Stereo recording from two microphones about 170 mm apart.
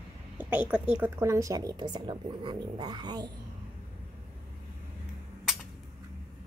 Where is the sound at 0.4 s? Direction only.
10° right (ahead or behind); by 3.3 s 25° right (ahead or behind).